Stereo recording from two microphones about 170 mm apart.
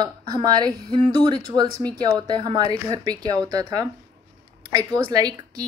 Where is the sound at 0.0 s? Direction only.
25° right (ahead or behind).